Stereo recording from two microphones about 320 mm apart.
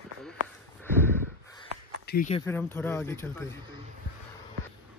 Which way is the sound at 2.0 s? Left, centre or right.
Left.